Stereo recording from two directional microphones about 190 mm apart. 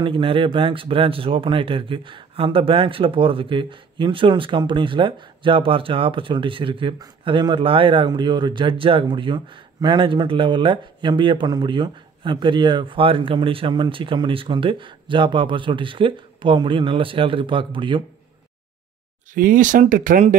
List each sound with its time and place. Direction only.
0.0 s speech: 25° right (ahead or behind)
19.3 s speech: 45° right (ahead or behind)